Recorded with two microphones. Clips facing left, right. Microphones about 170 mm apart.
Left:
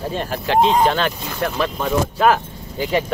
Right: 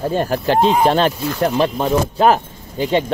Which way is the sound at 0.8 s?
30° right (ahead or behind).